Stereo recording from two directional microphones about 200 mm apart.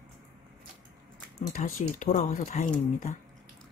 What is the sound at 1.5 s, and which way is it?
Speech, 45° left (ahead or behind).